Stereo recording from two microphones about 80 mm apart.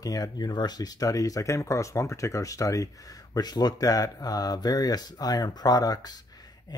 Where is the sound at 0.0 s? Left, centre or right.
Left.